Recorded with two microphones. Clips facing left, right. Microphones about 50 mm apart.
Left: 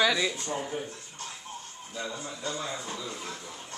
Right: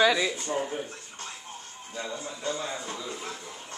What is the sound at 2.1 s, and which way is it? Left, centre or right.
Speech, right.